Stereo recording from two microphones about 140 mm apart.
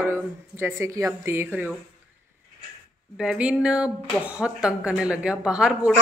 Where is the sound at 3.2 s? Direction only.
5° right (ahead or behind).